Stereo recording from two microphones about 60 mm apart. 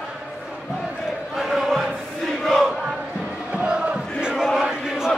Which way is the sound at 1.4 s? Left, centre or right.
Centre.